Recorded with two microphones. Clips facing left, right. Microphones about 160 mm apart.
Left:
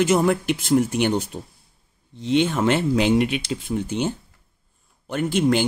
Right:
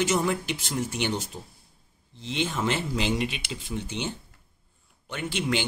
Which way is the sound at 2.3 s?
60° left (ahead or behind).